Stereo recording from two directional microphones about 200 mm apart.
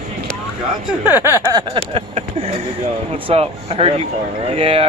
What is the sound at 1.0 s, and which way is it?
Speech, 10° right (ahead or behind).